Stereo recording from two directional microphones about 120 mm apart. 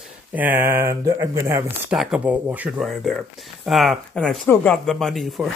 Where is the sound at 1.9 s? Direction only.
5° right (ahead or behind).